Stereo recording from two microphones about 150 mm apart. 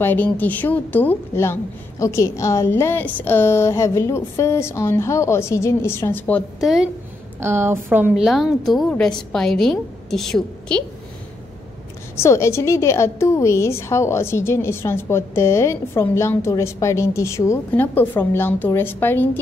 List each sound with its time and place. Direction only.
0.0 s a woman's voice: 15° left (ahead or behind)
6.6 s a woman's voice: 5° right (ahead or behind)
7.3 s a woman's voice: 15° right (ahead or behind)
8.1 s a woman's voice: centre (ahead or behind)
12.2 s a woman's voice: 20° left (ahead or behind)